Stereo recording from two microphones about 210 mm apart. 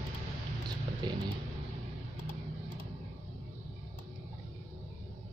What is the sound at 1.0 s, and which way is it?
Speech, 20° right (ahead or behind).